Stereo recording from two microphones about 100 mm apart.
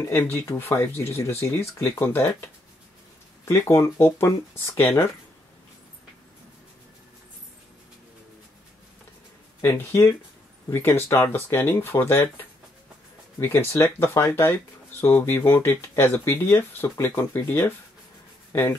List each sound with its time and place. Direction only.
0.0 s speech: 25° left (ahead or behind)
3.4 s speech: 25° left (ahead or behind)
9.6 s speech: 25° left (ahead or behind)